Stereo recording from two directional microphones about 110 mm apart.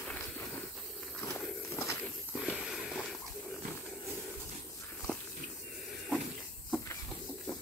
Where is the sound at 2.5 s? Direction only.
5° right (ahead or behind).